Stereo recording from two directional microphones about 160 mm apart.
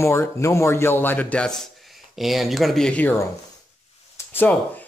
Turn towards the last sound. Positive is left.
turn(degrees=10)  # may be behind; listen again after turning